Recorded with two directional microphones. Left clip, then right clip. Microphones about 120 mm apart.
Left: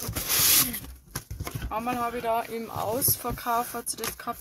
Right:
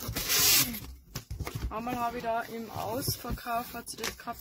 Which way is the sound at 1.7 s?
30° left (ahead or behind).